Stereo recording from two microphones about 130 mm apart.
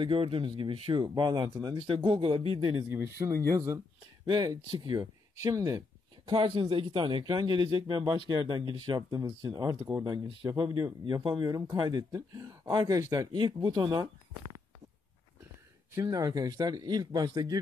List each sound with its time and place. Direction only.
0.0 s speech: 40° right (ahead or behind)
2.9 s speech: 20° right (ahead or behind); by 5.0 s 35° right (ahead or behind)
5.0 s a sound: 25° right (ahead or behind)
6.3 s speech: 40° right (ahead or behind)
9.8 s speech: 20° right (ahead or behind)
10.4 s speech: 30° right (ahead or behind)
15.9 s speech: 25° right (ahead or behind)